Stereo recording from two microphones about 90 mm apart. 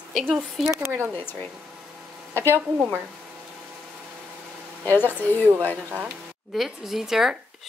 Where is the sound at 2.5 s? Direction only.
25° right (ahead or behind).